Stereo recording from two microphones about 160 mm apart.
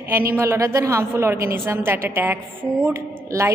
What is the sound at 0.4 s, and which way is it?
A woman's voice, 15° right (ahead or behind).